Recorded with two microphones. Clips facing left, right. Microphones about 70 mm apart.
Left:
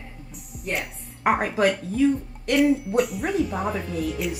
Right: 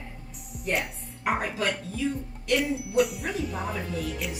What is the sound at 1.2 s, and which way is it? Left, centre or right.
Speech, left.